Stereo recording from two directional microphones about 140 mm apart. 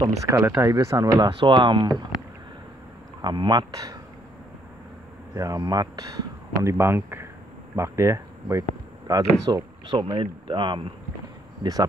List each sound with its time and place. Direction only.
0.4 s speech: 15° right (ahead or behind); by 2.0 s 35° right (ahead or behind)
3.2 s speech: 30° right (ahead or behind)
5.3 s speech: 25° right (ahead or behind)